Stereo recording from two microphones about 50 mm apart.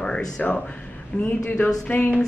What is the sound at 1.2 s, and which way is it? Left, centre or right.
Speech, left.